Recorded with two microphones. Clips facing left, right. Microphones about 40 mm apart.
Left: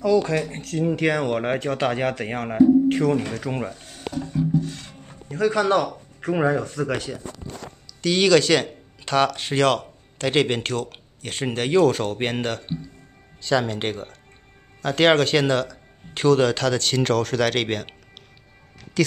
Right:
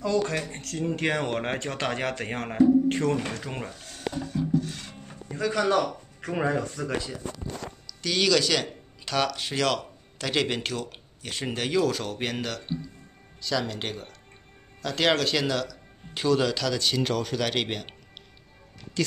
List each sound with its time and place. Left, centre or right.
0.5 s speech: left
1.1 s speech: centre
4.3 s music: centre
4.7 s music: centre
5.4 s speech: left
6.2 s speech: left
6.6 s speech: left
8.0 s speech: left